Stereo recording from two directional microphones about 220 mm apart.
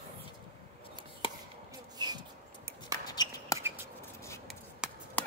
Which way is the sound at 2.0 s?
20° right (ahead or behind).